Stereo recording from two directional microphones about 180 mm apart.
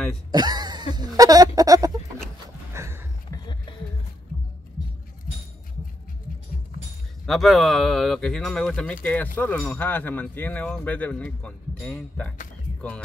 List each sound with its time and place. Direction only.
0.3 s a sound: 20° right (ahead or behind)
3.3 s music: 25° left (ahead or behind)
7.2 s speech: centre (ahead or behind)